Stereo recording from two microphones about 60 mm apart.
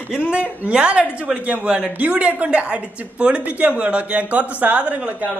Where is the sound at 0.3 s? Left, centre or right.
Centre.